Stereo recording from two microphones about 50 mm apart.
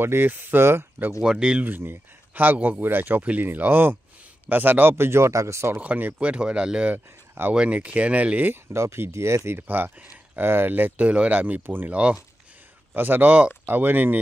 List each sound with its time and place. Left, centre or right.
0.0 s speech: right
1.2 s speech: centre
1.8 s speech: right
4.9 s speech: right
5.8 s speech: right
6.1 s speech: right
8.7 s speech: right
9.6 s speech: right
11.1 s speech: right
11.6 s speech: right
11.9 s speech: right
12.9 s speech: right